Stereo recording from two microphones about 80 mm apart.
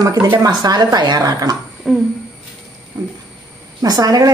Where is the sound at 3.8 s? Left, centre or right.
Right.